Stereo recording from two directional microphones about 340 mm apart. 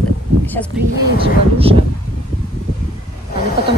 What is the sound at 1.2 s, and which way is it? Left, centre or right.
Speech, centre.